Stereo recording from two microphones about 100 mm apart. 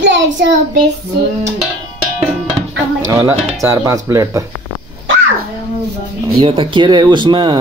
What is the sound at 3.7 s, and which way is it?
Speech, 35° right (ahead or behind).